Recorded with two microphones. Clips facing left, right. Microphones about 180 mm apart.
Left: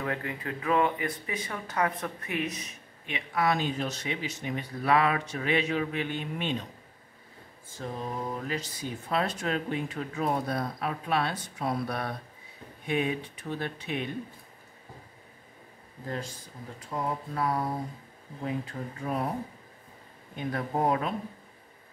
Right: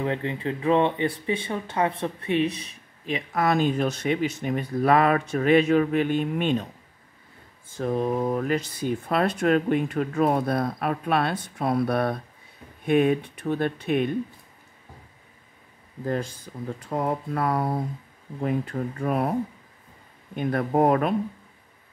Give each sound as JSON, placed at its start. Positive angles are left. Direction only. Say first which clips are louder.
{"t": 0.0, "sound": "speech", "louder": "right 6 dB", "side_deg": -25}
{"t": 7.8, "sound": "speech", "louder": "right 10 dB", "side_deg": -60}
{"t": 16.9, "sound": "speech", "louder": "right 6 dB", "side_deg": -60}
{"t": 20.3, "sound": "speech", "louder": "right 8 dB", "side_deg": -60}